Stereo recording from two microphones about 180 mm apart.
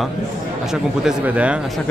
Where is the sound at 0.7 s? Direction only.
5° right (ahead or behind).